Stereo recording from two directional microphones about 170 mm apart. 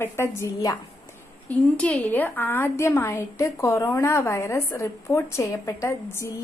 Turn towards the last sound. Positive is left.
turn(degrees=15)  # may be behind; listen again after turning